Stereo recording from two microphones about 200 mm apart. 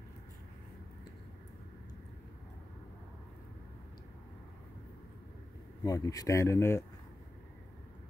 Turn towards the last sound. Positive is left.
turn(degrees=15)  # may be behind; listen again after turning